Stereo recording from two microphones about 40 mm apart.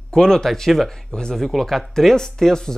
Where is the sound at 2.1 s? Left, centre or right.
Centre.